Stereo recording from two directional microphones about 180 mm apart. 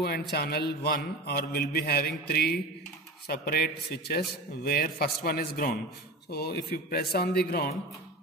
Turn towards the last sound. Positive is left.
turn(degrees=60)  # may be behind; listen again after turning